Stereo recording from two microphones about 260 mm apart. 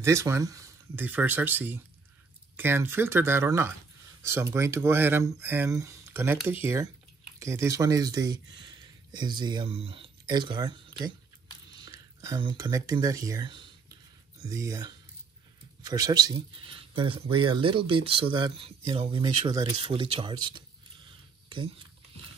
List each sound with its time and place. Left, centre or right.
0.0 s speech: centre